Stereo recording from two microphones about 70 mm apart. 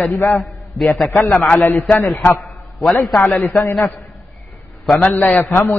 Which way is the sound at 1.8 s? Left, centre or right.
Left.